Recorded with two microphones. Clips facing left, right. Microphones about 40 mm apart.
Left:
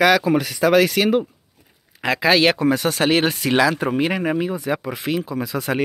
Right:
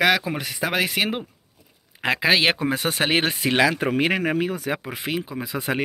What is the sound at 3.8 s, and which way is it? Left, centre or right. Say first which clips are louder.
Speech: left 1 dB; right.